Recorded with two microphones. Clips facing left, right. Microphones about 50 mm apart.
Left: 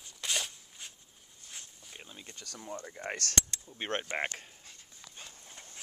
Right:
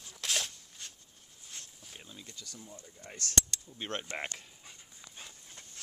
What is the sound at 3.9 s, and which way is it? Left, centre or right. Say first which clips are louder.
Speech: left 4 dB; left.